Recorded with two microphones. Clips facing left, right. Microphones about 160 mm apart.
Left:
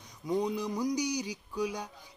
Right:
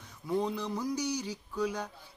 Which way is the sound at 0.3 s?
15° left (ahead or behind).